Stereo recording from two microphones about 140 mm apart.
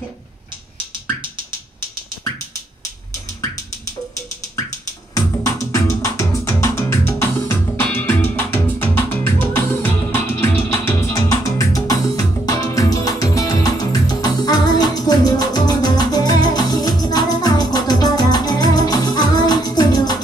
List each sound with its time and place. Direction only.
5.1 s music: 25° left (ahead or behind)